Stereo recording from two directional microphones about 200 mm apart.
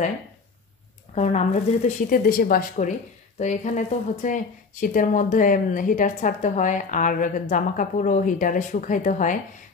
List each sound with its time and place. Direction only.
1.1 s speech: 35° left (ahead or behind)